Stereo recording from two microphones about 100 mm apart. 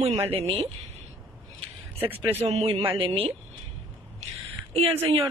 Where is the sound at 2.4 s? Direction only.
80° right.